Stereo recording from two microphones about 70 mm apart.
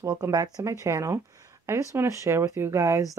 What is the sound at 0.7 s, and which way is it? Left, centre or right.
Speech, right.